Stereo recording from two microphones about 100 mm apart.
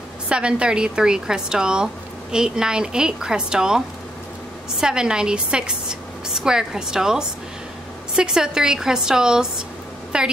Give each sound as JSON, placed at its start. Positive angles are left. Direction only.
{"t": 0.3, "sound": "a woman's voice", "side_deg": -10}